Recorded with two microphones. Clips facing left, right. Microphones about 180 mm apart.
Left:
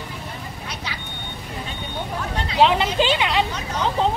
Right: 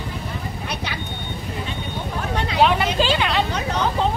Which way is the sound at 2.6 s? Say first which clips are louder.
Even; 20° left (ahead or behind).